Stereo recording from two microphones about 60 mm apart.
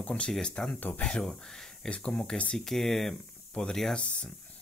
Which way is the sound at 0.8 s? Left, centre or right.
Left.